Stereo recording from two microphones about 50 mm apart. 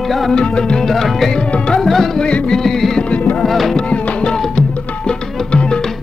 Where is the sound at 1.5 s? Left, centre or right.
Centre.